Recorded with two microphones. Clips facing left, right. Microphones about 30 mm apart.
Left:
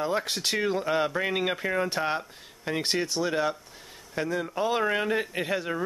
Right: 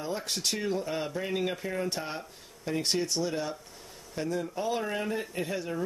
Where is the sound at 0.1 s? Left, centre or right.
Left.